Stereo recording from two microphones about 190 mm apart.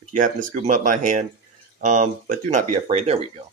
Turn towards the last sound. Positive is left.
turn(degrees=-35)  # may be behind; listen again after turning